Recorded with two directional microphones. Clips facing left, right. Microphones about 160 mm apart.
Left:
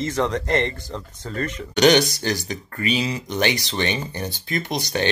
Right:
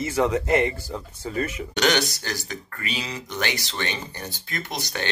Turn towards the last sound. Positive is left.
turn(degrees=20)  # may be behind; listen again after turning